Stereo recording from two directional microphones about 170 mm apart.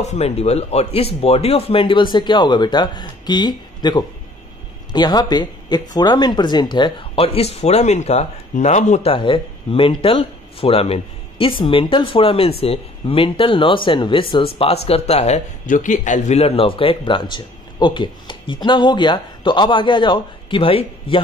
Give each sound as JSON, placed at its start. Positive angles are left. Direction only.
{"t": 0.0, "sound": "speech", "side_deg": 40}